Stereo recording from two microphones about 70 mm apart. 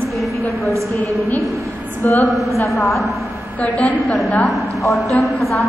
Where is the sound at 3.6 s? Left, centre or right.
Left.